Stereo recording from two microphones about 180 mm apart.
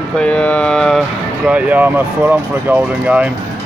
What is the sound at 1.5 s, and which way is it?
Speech, 10° right (ahead or behind).